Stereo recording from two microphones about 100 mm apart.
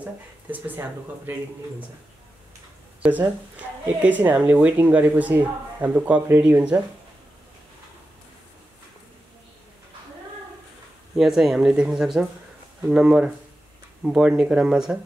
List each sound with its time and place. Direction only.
0.0 s a woman's voice: 15° right (ahead or behind)
3.0 s a woman's voice: 15° right (ahead or behind)
11.1 s a woman's voice: 5° right (ahead or behind)